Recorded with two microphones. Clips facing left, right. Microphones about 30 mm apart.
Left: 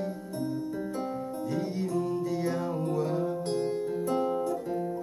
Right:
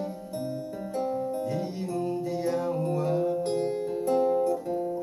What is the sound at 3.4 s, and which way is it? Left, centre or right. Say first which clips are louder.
Music: right 2 dB; right.